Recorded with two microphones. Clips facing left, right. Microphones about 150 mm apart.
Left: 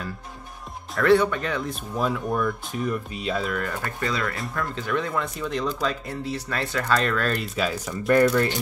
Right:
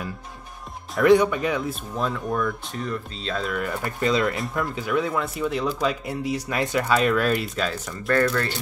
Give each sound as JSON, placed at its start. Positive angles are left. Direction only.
{"t": 1.0, "sound": "speech", "side_deg": -15}
{"t": 3.4, "sound": "speech", "side_deg": -5}
{"t": 4.0, "sound": "speech", "side_deg": -20}
{"t": 4.6, "sound": "speech", "side_deg": -10}
{"t": 7.5, "sound": "speech", "side_deg": 5}